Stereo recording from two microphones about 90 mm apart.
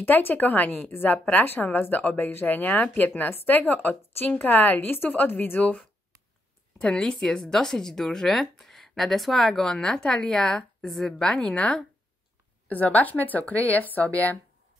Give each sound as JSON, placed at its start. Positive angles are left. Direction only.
{"t": 0.0, "sound": "a woman's voice", "side_deg": 25}